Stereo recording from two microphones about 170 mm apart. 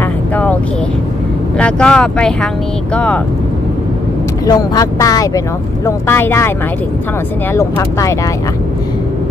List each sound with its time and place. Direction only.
1.6 s speech: 5° left (ahead or behind)
4.5 s speech: 20° left (ahead or behind)
7.5 s speech: 15° left (ahead or behind)